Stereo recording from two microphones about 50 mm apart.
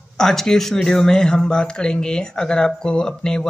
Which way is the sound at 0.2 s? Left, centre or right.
Centre.